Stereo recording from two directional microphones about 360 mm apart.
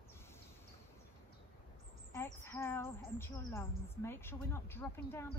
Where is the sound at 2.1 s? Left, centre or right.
Centre.